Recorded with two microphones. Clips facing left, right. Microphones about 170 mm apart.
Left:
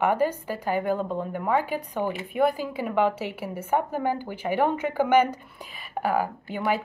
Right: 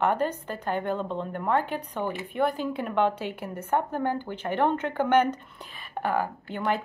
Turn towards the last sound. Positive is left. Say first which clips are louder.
# left 2 dB
turn(degrees=5)  # may be behind; listen again after turning